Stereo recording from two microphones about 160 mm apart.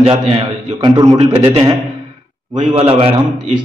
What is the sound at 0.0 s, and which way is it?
A man's voice, 35° right (ahead or behind).